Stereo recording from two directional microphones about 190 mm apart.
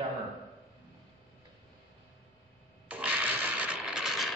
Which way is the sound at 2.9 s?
5° right (ahead or behind).